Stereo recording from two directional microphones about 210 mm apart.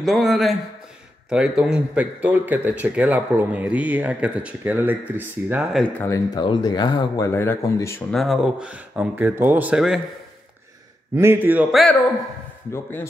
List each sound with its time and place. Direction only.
0.0 s a man's voice: centre (ahead or behind)
8.1 s speech: centre (ahead or behind)
11.1 s a man's voice: 10° right (ahead or behind)
12.7 s speech: 10° left (ahead or behind)